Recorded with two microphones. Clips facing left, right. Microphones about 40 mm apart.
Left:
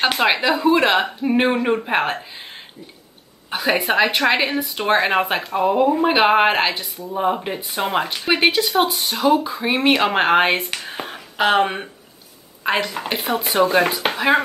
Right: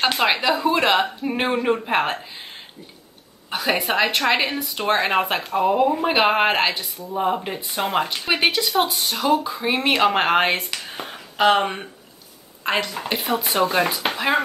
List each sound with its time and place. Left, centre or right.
0.2 s speech: centre
3.4 s speech: centre
8.4 s speech: centre
9.3 s speech: centre
10.7 s speech: left
12.6 s speech: centre